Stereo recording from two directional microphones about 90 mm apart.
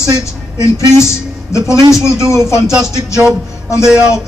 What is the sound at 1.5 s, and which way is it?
Speech, 35° left (ahead or behind).